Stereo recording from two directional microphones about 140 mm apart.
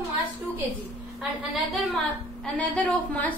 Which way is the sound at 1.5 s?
Centre (ahead or behind).